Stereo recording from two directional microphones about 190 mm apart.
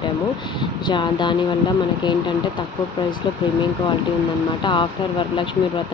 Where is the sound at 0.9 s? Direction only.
25° left (ahead or behind).